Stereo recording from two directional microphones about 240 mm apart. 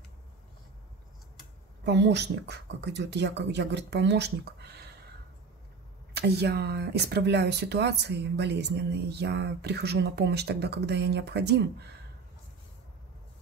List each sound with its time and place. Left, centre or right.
1.9 s speech: right
6.1 s speech: right